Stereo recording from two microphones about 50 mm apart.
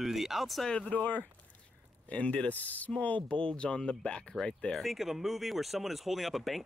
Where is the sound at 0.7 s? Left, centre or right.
Left.